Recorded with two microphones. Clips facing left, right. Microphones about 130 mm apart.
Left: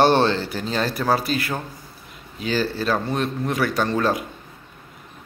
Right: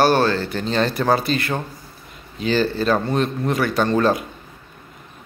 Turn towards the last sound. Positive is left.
turn(degrees=0)  # may be behind; listen again after turning